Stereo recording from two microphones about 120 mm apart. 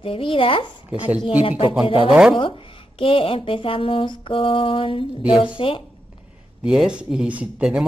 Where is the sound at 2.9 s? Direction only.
50° left (ahead or behind).